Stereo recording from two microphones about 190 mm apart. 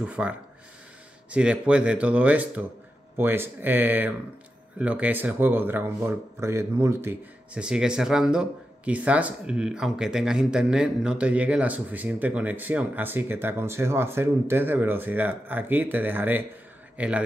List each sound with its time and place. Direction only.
0.0 s speech: 5° right (ahead or behind)
1.3 s a man's voice: 5° right (ahead or behind)